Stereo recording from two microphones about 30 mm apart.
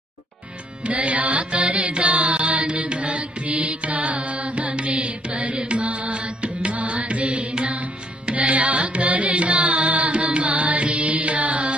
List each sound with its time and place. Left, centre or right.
0.8 s music: right
2.0 s mantra: right
2.3 s chant: right
3.0 s music: right
8.4 s carnatic music: right
10.2 s music: right